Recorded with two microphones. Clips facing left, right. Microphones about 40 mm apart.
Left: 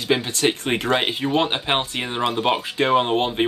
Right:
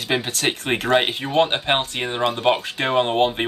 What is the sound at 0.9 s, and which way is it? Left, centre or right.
Speech, centre.